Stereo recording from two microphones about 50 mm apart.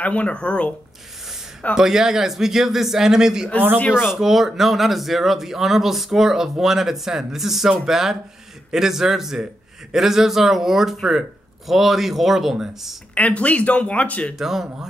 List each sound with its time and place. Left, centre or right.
0.0 s speech: left
1.8 s a man's voice: centre
13.1 s speech: left
14.4 s a man's voice: centre